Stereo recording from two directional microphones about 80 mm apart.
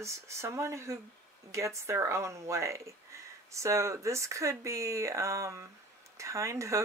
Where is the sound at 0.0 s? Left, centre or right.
Right.